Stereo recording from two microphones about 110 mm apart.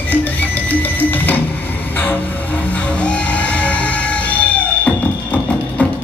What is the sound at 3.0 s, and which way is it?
Music, 10° left (ahead or behind).